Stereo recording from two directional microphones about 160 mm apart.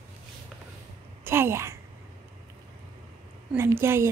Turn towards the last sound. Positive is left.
turn(degrees=-15)  # may be behind; listen again after turning